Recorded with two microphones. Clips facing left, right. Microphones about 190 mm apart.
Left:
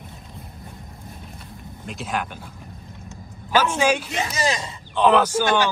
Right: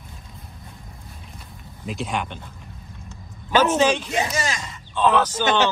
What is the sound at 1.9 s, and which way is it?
Speech, centre (ahead or behind).